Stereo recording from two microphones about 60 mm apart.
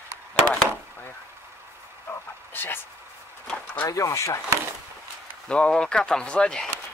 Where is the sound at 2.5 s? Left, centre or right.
Left.